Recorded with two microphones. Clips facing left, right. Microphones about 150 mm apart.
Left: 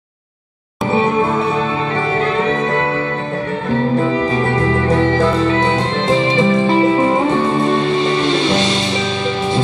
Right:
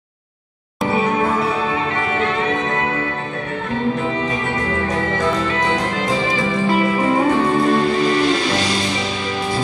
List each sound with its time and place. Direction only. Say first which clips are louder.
4.8 s music: left 6 dB; 30° left (ahead or behind)